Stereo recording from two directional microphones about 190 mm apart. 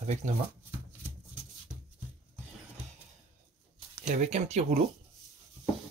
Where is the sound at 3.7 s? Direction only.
40° right (ahead or behind).